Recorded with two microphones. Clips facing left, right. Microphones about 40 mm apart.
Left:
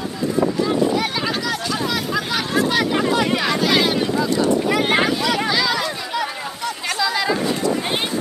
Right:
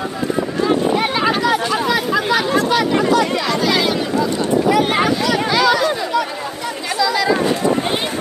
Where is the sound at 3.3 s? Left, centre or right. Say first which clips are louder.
Right 1 dB; centre.